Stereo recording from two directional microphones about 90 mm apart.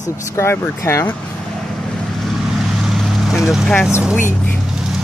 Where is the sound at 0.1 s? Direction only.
35° left (ahead or behind).